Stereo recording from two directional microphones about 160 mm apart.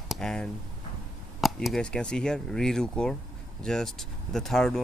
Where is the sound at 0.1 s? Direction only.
5° left (ahead or behind).